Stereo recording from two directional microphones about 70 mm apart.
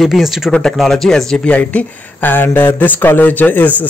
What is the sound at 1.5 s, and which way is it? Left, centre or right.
A man's voice, left.